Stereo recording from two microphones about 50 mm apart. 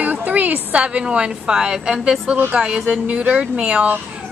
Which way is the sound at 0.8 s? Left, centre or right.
Right.